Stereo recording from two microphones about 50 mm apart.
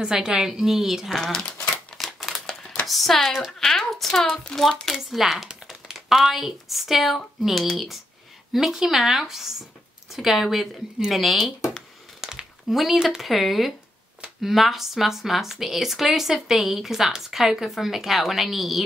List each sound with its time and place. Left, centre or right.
0.0 s speech: centre
1.6 s crumpling: centre
2.1 s typewriter: centre
2.9 s speech: centre
3.5 s a sound: centre
4.5 s a child's voice: centre
4.9 s speech: centre
12.2 s a sound: centre
12.6 s speech: centre